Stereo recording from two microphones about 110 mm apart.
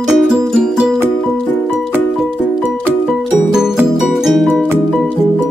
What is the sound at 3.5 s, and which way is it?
Music, 5° right (ahead or behind).